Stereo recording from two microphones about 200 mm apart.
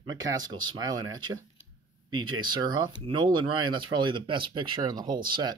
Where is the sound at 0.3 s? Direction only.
20° right (ahead or behind).